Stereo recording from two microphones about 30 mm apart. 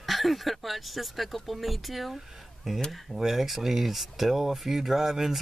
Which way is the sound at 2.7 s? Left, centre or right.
Centre.